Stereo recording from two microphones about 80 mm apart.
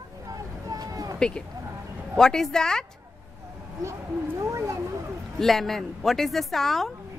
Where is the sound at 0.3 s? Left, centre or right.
Right.